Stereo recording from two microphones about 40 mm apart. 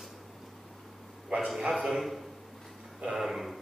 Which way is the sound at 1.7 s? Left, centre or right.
Centre.